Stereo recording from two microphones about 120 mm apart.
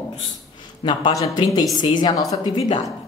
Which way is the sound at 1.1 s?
30° left (ahead or behind).